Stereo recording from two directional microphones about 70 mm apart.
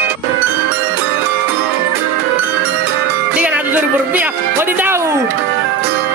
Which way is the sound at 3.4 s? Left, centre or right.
Right.